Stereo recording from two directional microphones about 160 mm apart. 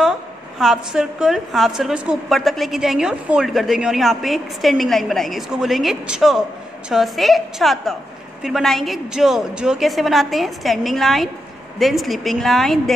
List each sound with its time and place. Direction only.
0.6 s a woman's voice: centre (ahead or behind)